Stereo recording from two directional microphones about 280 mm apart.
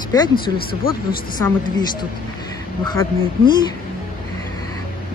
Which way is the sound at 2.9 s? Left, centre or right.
Centre.